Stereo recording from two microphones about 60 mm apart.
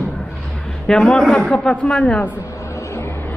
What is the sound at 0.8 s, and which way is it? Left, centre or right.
Speech, centre.